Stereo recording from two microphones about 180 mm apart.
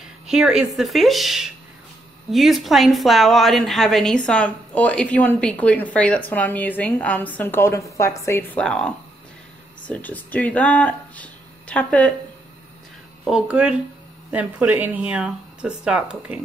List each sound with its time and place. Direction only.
0.0 s a woman's voice: 5° right (ahead or behind)
13.2 s speech: 5° right (ahead or behind)